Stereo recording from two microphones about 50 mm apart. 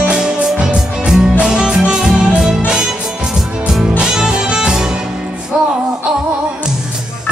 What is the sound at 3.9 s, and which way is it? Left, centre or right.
Music, centre.